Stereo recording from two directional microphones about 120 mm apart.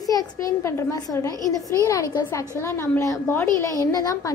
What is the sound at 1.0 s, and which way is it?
A woman's voice, 30° left (ahead or behind).